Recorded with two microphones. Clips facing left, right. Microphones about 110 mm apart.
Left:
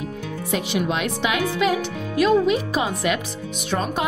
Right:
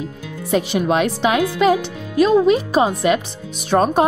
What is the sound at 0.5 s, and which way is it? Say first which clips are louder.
Speech: right 6 dB; 40° right (ahead or behind).